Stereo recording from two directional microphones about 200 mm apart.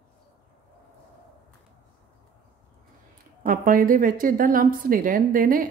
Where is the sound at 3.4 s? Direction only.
45° right (ahead or behind).